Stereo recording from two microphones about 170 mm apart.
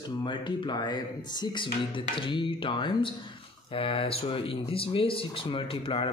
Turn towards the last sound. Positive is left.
turn(degrees=30)  # may be behind; listen again after turning